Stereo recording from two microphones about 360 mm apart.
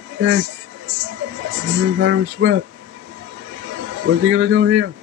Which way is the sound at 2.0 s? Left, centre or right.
Right.